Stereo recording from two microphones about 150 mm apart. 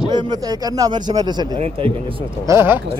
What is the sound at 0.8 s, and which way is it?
Speech, 25° right (ahead or behind).